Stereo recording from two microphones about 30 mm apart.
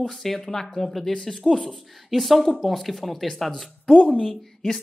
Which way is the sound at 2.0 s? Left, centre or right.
Centre.